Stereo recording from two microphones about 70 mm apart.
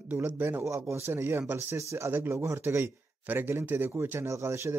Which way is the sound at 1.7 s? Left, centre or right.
Right.